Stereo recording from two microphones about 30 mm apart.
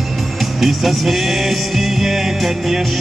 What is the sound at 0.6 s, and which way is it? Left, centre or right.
Music, centre.